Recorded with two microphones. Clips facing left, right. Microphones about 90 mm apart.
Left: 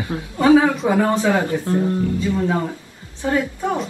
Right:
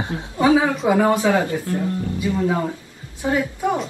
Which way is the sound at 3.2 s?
15° right (ahead or behind).